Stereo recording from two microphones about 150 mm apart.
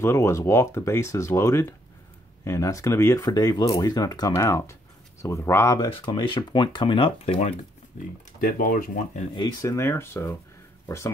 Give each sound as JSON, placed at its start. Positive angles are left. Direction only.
{"t": 0.0, "sound": "speech", "side_deg": 20}
{"t": 5.9, "sound": "speech", "side_deg": 30}
{"t": 8.4, "sound": "speech", "side_deg": 65}
{"t": 9.3, "sound": "speech", "side_deg": 30}